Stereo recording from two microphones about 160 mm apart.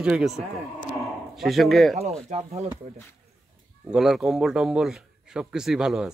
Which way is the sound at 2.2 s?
45° right (ahead or behind).